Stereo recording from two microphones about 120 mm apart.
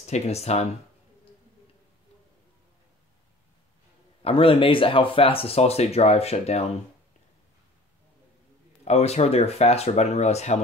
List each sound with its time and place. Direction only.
0.0 s speech: 65° left (ahead or behind)
4.2 s speech: 50° left (ahead or behind)
8.8 s speech: 65° left (ahead or behind)